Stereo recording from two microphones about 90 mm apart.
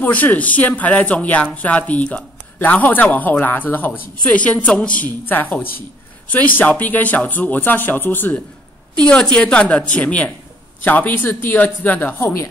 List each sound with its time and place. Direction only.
0.0 s speech: 20° left (ahead or behind)
9.0 s speech: 10° left (ahead or behind)